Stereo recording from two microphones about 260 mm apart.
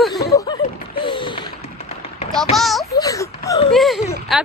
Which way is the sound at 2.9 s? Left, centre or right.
Centre.